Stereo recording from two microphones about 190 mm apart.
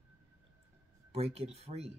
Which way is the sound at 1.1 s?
30° right (ahead or behind).